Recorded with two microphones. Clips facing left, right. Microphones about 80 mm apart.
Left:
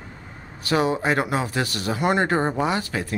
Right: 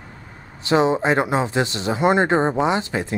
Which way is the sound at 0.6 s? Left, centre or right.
Right.